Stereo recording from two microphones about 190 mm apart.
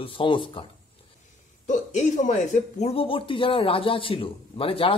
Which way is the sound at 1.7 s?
40° left (ahead or behind).